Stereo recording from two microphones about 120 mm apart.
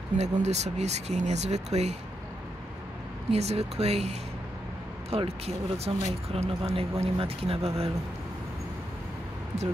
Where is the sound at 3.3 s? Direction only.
65° right (ahead or behind).